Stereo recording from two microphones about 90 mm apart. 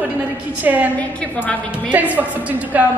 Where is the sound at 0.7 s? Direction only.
20° right (ahead or behind).